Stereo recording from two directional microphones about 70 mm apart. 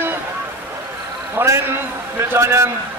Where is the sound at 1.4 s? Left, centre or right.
Right.